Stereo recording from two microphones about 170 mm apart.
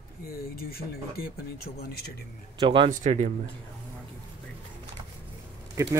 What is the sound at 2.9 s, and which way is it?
Speech, 45° right (ahead or behind).